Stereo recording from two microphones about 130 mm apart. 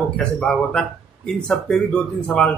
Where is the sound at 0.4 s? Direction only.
5° left (ahead or behind).